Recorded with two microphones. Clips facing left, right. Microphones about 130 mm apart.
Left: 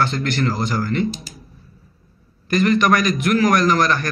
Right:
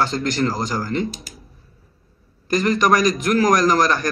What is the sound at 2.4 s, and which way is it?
A man's voice, 40° right (ahead or behind).